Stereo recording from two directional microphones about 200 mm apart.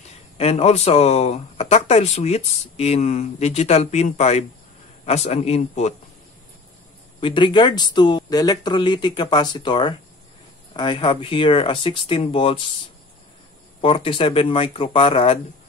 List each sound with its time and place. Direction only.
0.4 s speech: 30° left (ahead or behind)
7.2 s speech: 25° left (ahead or behind)
13.7 s speech: 25° left (ahead or behind)